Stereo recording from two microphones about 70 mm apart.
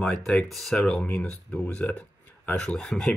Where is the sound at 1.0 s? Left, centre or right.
Centre.